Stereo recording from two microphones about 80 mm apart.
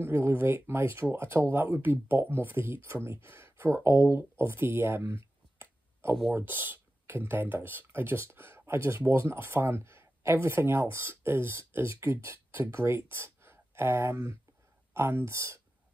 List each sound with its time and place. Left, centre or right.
0.0 s speech: right